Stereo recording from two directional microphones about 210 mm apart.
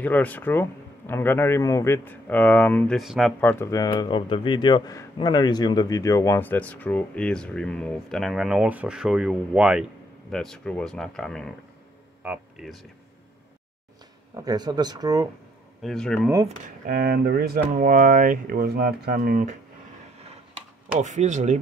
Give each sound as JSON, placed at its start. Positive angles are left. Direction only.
{"t": 0.0, "sound": "speech", "side_deg": 10}
{"t": 14.3, "sound": "speech", "side_deg": -20}
{"t": 15.8, "sound": "speech", "side_deg": 0}
{"t": 16.4, "sound": "speech", "side_deg": -40}
{"t": 21.0, "sound": "speech", "side_deg": -35}